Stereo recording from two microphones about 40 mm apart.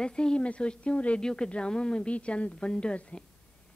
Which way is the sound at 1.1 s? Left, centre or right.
Left.